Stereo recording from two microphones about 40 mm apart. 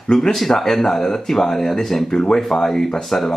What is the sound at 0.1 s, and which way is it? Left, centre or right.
Speech, centre.